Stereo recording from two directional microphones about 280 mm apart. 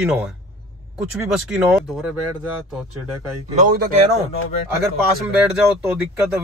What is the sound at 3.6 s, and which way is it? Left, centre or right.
Speech, right.